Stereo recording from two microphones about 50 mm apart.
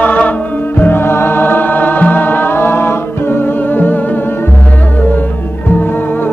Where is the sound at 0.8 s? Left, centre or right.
Left.